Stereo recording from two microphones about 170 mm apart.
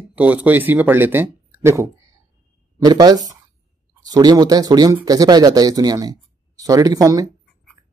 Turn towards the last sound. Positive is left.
turn(degrees=-20)  # may be behind; listen again after turning